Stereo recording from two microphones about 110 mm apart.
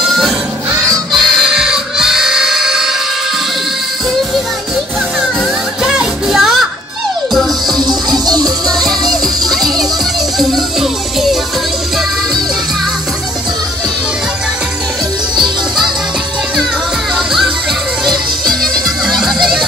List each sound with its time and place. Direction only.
1.1 s music: 5° right (ahead or behind)
5.9 s music: 5° right (ahead or behind)
8.3 s music: 35° right (ahead or behind)
9.5 s music: 5° left (ahead or behind)
15.3 s music: 45° right (ahead or behind)
17.1 s music: centre (ahead or behind)
18.5 s music: centre (ahead or behind)